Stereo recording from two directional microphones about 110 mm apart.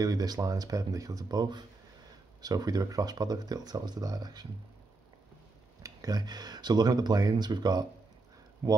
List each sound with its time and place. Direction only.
0.0 s speech: 35° right (ahead or behind)
5.8 s speech: 30° right (ahead or behind)